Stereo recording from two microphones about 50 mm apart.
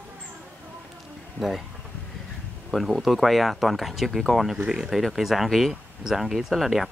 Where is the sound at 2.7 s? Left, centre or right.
Centre.